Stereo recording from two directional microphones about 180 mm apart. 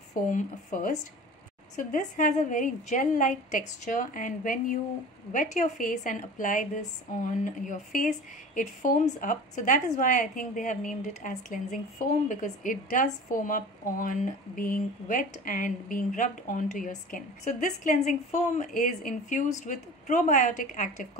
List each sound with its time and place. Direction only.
0.3 s a woman's voice: 45° left (ahead or behind)